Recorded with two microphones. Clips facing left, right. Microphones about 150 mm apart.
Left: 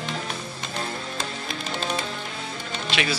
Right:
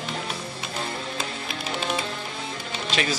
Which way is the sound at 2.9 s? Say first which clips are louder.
Even; 40° right (ahead or behind).